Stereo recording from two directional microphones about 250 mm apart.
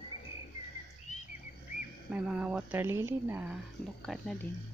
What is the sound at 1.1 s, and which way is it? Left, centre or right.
Bird, left.